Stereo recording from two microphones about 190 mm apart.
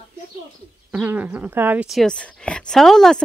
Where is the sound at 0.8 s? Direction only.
5° right (ahead or behind).